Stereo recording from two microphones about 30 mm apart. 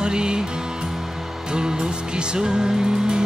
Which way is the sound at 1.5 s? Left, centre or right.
Right.